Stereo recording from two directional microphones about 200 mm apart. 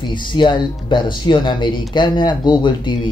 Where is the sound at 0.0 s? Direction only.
25° left (ahead or behind).